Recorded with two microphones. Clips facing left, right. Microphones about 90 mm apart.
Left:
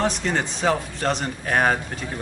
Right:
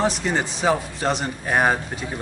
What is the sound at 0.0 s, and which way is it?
Speech, 5° right (ahead or behind).